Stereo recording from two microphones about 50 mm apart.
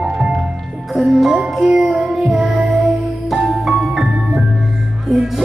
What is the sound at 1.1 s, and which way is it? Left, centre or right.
Music, centre.